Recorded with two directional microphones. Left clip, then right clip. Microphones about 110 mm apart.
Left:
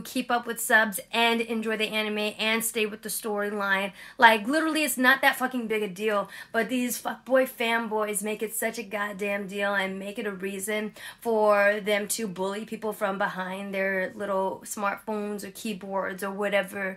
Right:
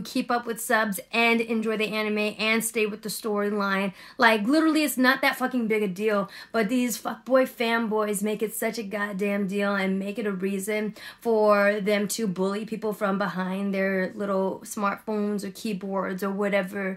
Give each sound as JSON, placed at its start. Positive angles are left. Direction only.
{"t": 0.1, "sound": "a woman's voice", "side_deg": -25}